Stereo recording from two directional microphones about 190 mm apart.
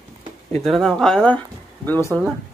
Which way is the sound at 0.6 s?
Centre (ahead or behind).